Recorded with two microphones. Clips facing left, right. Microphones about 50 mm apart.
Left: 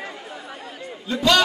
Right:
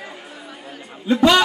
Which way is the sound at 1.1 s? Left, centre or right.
Right.